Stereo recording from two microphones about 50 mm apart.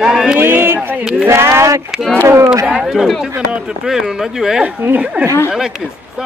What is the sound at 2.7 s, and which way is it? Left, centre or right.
Speech, centre.